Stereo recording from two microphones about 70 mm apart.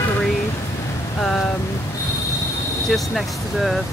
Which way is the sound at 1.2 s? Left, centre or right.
Centre.